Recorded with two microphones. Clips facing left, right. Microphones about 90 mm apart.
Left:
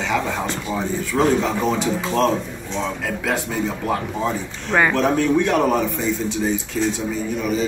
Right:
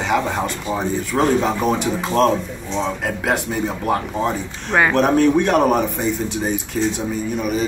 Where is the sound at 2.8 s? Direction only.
20° right (ahead or behind).